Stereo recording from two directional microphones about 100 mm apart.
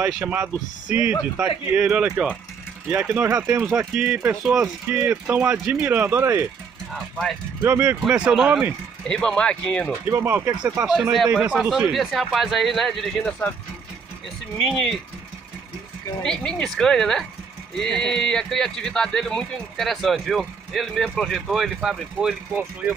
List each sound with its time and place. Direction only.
0.2 s speech: 15° right (ahead or behind)
3.9 s speech: 15° right (ahead or behind)
6.9 s speech: centre (ahead or behind)
7.6 s speech: 20° right (ahead or behind)
9.0 s speech: 10° left (ahead or behind)
10.0 s speech: 20° right (ahead or behind)
10.9 s speech: 5° right (ahead or behind)
11.9 s speech: centre (ahead or behind)
14.6 s speech: 5° left (ahead or behind)
16.2 s speech: 5° left (ahead or behind)